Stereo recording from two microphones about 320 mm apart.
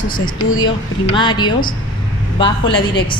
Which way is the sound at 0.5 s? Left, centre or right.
Centre.